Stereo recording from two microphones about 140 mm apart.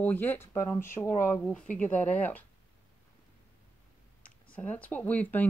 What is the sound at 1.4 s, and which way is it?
Speech, 10° left (ahead or behind).